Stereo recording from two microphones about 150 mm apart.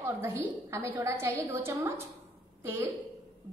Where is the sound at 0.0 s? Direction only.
15° right (ahead or behind).